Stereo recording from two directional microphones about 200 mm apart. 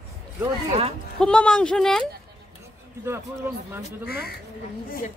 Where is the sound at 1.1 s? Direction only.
5° left (ahead or behind).